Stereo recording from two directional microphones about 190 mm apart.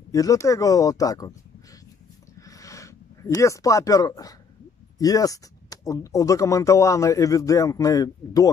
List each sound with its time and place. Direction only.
0.1 s speech: 15° left (ahead or behind)
2.4 s a sound: 15° left (ahead or behind)
3.3 s speech: 15° left (ahead or behind)